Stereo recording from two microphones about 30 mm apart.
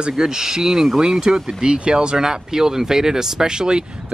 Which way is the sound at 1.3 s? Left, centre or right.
Right.